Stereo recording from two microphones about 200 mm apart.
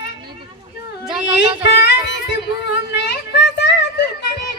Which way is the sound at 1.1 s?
5° right (ahead or behind).